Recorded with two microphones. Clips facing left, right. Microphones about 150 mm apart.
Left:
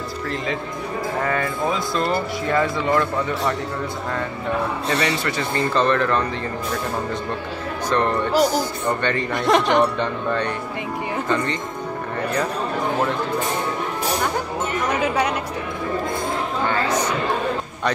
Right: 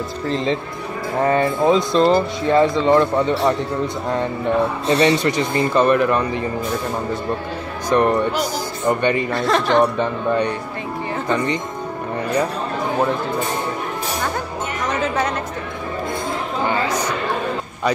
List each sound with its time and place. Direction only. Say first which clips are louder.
1.2 s speech: right 9 dB; 25° right (ahead or behind)
7.9 s speech: right 3 dB; 15° right (ahead or behind)
9.3 s speech: even; 15° left (ahead or behind)
9.9 s speech: right 4 dB; 15° right (ahead or behind)
14.9 s speech: right 1 dB; 10° left (ahead or behind)
16.6 s chatter: right 1 dB; 15° right (ahead or behind)